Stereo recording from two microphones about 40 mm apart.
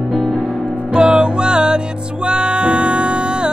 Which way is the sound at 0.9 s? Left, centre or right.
Right.